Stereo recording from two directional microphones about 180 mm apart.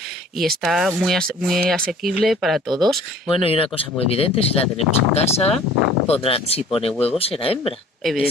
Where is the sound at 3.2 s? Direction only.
30° left (ahead or behind).